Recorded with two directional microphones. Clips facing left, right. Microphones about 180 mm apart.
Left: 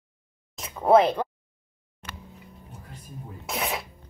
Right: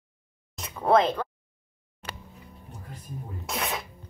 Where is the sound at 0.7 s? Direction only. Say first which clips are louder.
Left 3 dB; 10° left (ahead or behind).